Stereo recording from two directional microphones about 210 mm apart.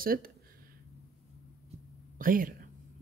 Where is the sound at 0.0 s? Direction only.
45° right (ahead or behind).